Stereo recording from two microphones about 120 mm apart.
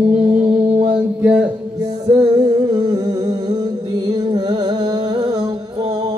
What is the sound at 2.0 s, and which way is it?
Humming, 30° right (ahead or behind).